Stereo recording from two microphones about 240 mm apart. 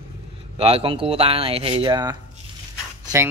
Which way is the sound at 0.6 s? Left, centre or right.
Right.